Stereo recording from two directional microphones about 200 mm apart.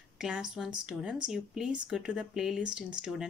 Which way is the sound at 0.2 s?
5° right (ahead or behind).